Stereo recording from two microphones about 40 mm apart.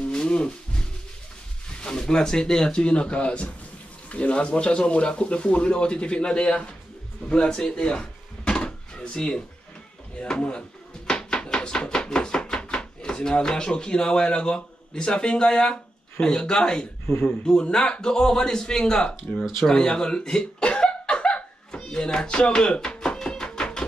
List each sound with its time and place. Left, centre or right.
0.1 s music: left
1.8 s speech: centre
2.7 s speech: left
7.2 s drawer open or close: centre
10.1 s speech: left
11.1 s chopping: centre
15.7 s speech: centre
21.4 s hiccup: left
22.8 s music: centre